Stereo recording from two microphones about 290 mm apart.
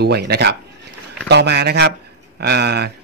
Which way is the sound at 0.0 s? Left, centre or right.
Right.